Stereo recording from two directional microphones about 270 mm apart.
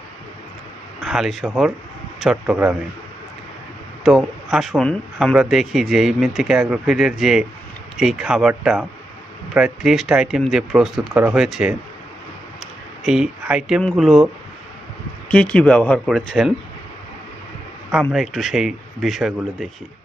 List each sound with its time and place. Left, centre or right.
1.0 s speech: centre
4.0 s speech: centre
13.0 s speech: centre
18.0 s speech: centre